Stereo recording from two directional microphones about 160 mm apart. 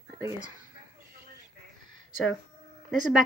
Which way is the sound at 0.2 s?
20° right (ahead or behind).